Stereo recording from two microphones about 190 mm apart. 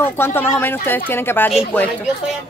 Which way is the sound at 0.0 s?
10° left (ahead or behind).